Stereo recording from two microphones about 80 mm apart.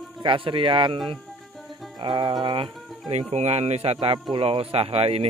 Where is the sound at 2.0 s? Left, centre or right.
Right.